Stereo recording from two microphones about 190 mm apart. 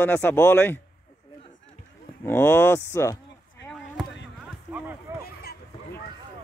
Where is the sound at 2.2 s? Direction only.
10° left (ahead or behind).